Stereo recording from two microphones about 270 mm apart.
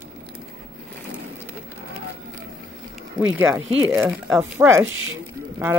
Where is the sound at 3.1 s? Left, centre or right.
Centre.